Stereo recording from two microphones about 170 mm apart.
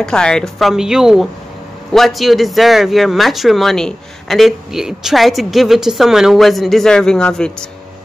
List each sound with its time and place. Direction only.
0.0 s speech: 5° left (ahead or behind)